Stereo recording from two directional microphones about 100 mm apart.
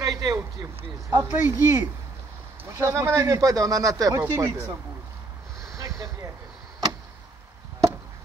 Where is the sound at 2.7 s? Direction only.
30° right (ahead or behind).